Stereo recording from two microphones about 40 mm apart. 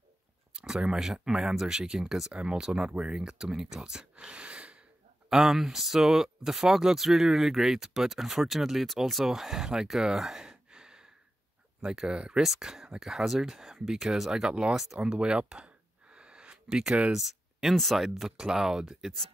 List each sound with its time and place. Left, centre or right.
0.6 s speech: centre
2.3 s speech: right
4.3 s gasp: right
5.3 s speech: centre
10.4 s sigh: centre
11.8 s speech: centre
14.5 s speech: right
15.1 s a sound: right
16.6 s speech: centre